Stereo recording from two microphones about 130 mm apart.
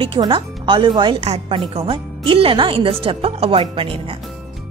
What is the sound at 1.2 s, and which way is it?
Speech, 50° right (ahead or behind).